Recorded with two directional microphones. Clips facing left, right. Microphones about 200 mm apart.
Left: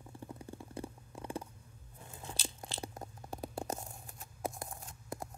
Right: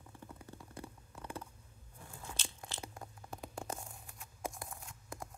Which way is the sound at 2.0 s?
20° left (ahead or behind).